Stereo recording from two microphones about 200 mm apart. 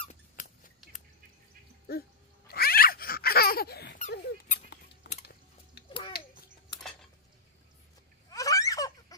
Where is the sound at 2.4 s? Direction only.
50° left (ahead or behind).